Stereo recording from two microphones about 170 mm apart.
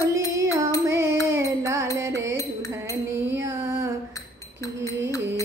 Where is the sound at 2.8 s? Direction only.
15° right (ahead or behind).